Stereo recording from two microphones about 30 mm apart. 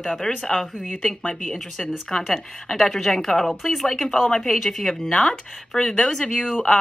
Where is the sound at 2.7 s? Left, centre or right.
Centre.